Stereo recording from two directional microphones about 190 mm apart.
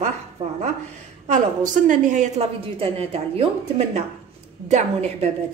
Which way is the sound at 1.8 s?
45° right (ahead or behind).